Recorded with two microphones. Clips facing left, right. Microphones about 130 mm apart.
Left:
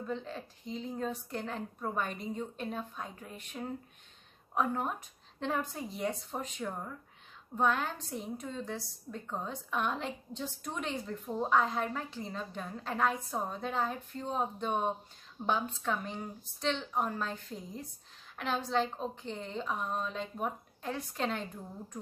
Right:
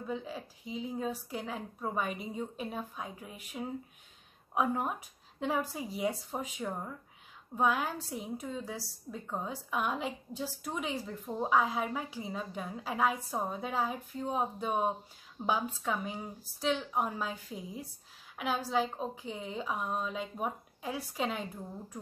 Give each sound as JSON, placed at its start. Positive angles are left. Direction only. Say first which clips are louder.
{"t": 0.0, "sound": "a woman's voice", "louder": "even", "side_deg": -5}